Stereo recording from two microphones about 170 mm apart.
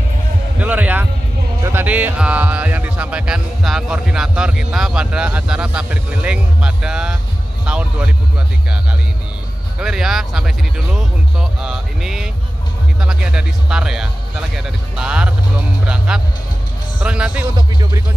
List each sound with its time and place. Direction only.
0.6 s music: 10° right (ahead or behind)
1.6 s speech: 15° right (ahead or behind)
9.8 s speech: 5° right (ahead or behind)
17.6 s music: 25° right (ahead or behind)